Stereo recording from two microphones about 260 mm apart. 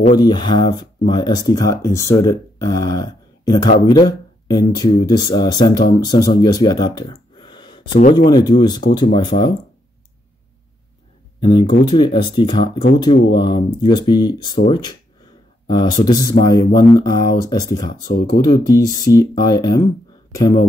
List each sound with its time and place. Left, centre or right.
0.2 s speech: centre
8.0 s speech: left
8.3 s speech: centre
11.3 s speech: centre
18.0 s speech: left
18.4 s speech: centre